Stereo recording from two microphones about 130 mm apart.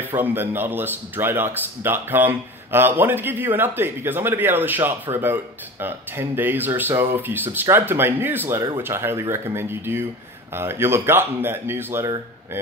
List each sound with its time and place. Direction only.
0.1 s speech: 15° right (ahead or behind)